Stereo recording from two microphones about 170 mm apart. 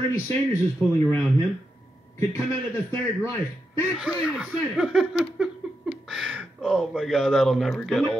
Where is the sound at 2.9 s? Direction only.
15° left (ahead or behind).